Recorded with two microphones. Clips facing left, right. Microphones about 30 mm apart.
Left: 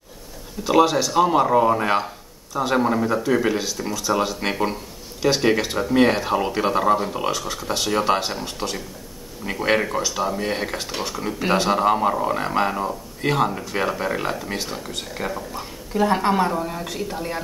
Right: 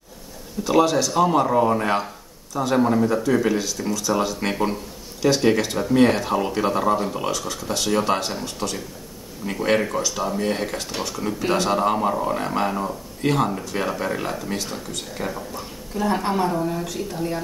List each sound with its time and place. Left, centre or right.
0.7 s speech: centre